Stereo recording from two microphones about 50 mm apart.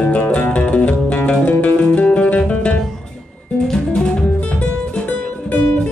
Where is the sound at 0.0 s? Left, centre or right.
Left.